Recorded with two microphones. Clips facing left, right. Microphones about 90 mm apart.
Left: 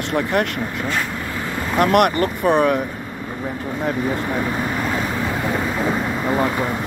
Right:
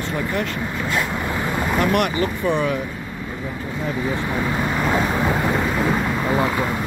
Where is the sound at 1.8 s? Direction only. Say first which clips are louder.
Left 6 dB; 55° left (ahead or behind).